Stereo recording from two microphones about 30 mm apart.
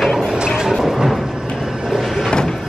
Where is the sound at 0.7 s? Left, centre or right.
Centre.